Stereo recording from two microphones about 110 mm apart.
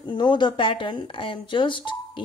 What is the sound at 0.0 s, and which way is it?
Speech, 45° left (ahead or behind).